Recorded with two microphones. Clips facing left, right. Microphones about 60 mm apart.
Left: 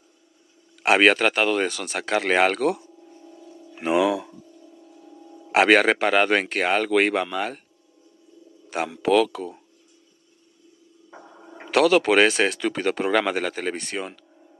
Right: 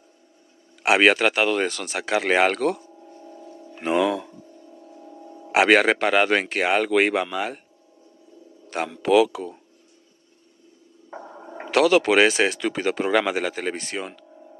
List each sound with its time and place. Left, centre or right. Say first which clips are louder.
0.8 s speech: even; centre
3.1 s a sound: right 4 dB; right
3.7 s speech: left 1 dB; centre
4.7 s a sound: right 6 dB; right
5.5 s speech: even; centre
8.6 s speech: even; centre
11.1 s gargling: right 6 dB; right
11.6 s speech: even; centre